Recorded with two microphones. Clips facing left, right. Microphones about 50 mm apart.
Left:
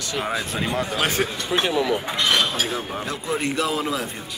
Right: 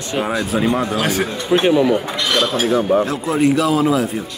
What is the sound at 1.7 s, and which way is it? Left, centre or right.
Speech, centre.